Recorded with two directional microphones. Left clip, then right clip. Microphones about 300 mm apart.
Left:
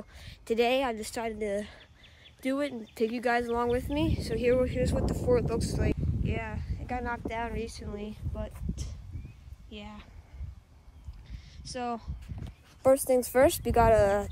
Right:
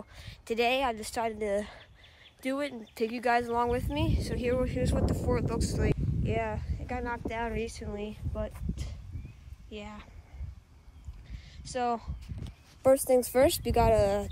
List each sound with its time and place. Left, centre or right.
0.1 s speech: centre
11.2 s a sound: centre
13.0 s a woman's voice: centre